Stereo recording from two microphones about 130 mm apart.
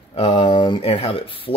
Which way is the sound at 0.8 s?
45° left (ahead or behind).